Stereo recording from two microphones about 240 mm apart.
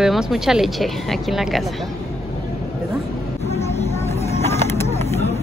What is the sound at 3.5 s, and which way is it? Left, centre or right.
Vehicle, left.